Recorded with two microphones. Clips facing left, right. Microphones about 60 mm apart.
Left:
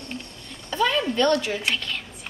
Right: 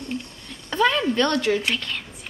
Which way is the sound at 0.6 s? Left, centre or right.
Right.